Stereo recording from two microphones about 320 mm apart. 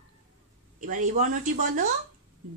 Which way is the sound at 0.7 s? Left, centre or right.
Right.